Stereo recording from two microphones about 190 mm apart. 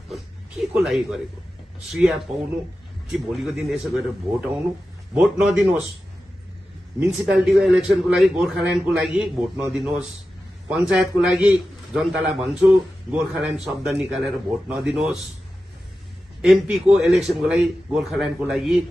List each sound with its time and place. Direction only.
0.1 s a man's voice: centre (ahead or behind)
7.0 s a man's voice: 5° right (ahead or behind)
16.3 s a man's voice: 5° right (ahead or behind)